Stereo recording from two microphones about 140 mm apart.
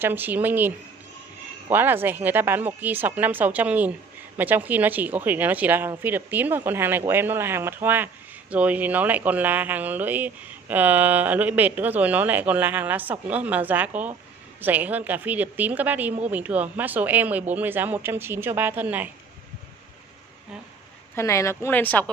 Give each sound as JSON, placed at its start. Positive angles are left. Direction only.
{"t": 0.0, "sound": "speech", "side_deg": -15}
{"t": 21.1, "sound": "speech", "side_deg": 20}